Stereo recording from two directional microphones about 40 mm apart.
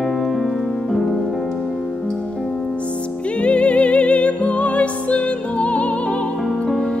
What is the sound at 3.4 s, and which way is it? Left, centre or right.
Music, left.